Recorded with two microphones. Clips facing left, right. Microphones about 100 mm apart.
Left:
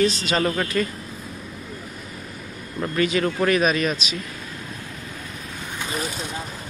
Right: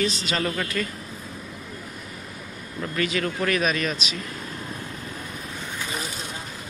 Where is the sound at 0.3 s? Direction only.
35° left (ahead or behind).